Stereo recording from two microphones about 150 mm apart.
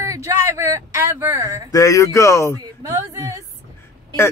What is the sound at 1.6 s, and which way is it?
Speech, 20° left (ahead or behind).